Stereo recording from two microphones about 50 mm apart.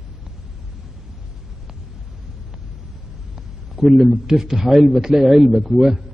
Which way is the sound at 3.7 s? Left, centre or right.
Centre.